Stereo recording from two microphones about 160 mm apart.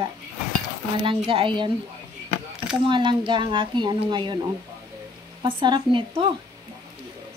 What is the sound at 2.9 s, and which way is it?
Speech, 30° right (ahead or behind).